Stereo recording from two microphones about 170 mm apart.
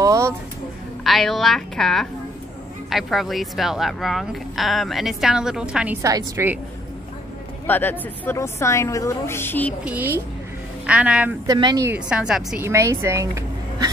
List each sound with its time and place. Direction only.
0.0 s a sound: 20° right (ahead or behind)
1.0 s speech: centre (ahead or behind)
6.0 s a woman's voice: 20° right (ahead or behind)
7.6 s a woman's voice: 10° left (ahead or behind)
9.8 s a woman's voice: 10° right (ahead or behind)
11.4 s speech: 25° right (ahead or behind)
12.1 s speech: 5° right (ahead or behind)
12.6 s speech: 15° right (ahead or behind)